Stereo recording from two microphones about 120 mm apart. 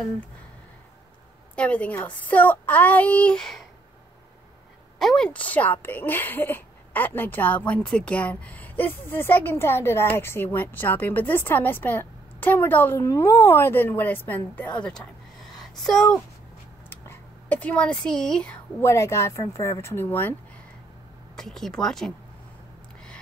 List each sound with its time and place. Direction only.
1.5 s a woman's voice: 10° left (ahead or behind)
4.9 s a woman's voice: 5° left (ahead or behind)
16.9 s speech: 20° left (ahead or behind)
18.8 s speech: 20° left (ahead or behind)
21.4 s speech: 5° left (ahead or behind)